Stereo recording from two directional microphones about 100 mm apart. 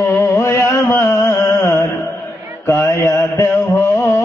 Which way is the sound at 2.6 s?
25° left (ahead or behind).